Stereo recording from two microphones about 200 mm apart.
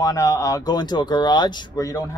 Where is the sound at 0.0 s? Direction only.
15° left (ahead or behind).